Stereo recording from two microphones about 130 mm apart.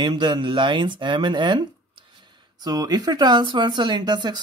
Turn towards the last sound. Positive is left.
turn(degrees=-35)  # may be behind; listen again after turning